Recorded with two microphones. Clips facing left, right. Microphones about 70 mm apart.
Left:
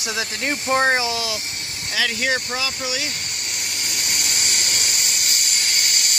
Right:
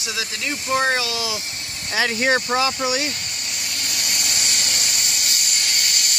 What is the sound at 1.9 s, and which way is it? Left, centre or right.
Speech, right.